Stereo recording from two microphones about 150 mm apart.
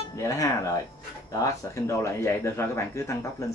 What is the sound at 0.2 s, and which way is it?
Speech, 20° left (ahead or behind).